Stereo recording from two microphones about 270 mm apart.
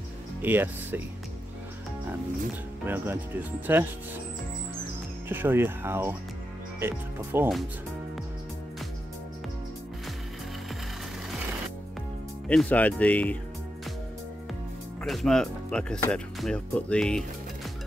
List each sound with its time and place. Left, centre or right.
0.4 s speech: centre
2.8 s speech: centre
5.3 s speech: centre
12.4 s speech: centre
15.0 s speech: centre